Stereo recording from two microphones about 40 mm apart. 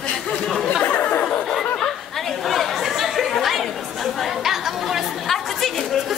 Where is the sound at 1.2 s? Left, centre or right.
Left.